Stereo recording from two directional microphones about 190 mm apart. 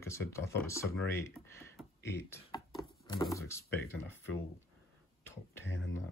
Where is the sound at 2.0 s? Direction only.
15° left (ahead or behind).